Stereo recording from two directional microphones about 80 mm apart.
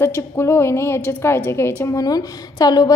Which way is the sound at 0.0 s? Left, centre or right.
Left.